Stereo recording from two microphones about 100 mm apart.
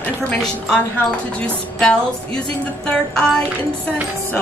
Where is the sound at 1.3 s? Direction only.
10° left (ahead or behind).